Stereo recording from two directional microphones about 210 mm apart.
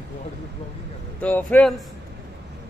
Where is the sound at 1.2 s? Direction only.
5° left (ahead or behind).